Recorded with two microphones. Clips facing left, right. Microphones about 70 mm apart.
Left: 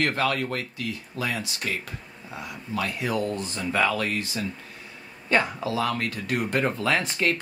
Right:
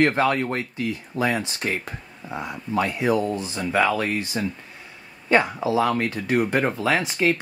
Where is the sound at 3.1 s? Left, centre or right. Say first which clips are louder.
Right 3 dB; centre.